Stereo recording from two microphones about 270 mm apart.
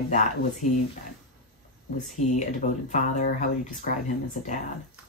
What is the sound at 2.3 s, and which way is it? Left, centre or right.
Speech, left.